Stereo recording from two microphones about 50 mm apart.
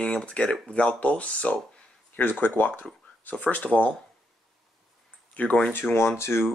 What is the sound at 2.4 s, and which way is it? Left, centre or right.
Speech, left.